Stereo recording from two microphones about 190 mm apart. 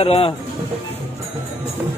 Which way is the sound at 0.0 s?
30° left (ahead or behind).